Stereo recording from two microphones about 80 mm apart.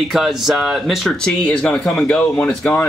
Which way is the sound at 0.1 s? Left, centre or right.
Centre.